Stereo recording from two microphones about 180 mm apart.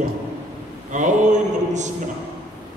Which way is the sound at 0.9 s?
40° right (ahead or behind).